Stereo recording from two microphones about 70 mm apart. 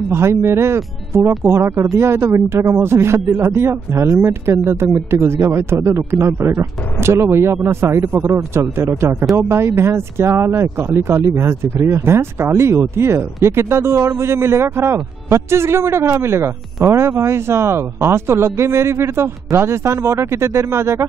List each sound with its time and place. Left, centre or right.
0.1 s a man's voice: right